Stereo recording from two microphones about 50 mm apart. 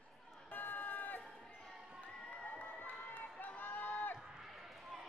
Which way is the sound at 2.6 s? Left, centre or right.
Left.